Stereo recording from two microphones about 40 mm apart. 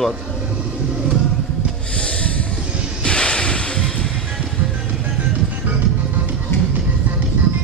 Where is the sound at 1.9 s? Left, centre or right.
Left.